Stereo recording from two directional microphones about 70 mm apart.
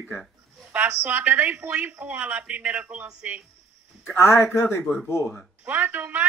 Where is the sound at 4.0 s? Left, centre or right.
Left.